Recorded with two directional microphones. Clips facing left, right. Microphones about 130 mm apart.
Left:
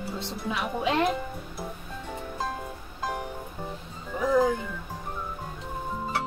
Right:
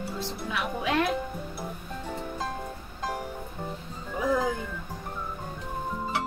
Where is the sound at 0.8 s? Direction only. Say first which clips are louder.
Left 2 dB; 25° left (ahead or behind).